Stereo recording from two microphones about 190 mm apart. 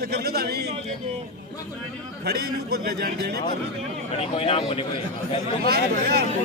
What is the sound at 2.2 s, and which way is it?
A man's voice, 55° right (ahead or behind).